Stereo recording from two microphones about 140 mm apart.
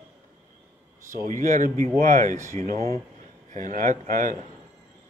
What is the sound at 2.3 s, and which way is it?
Speech, 55° right (ahead or behind).